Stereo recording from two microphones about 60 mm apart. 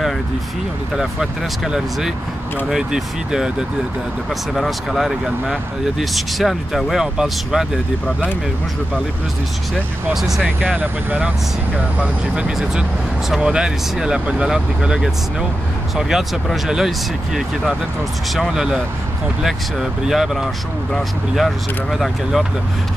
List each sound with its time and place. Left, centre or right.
0.9 s speech: centre
4.3 s speech: centre
10.1 s speech: centre
10.4 s speech: right
16.0 s speech: centre